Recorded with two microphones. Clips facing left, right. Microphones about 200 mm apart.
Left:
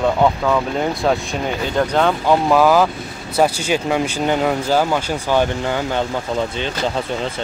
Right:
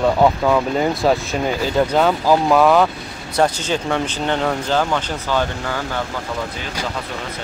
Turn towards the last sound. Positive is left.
turn(degrees=20)  # may be behind; listen again after turning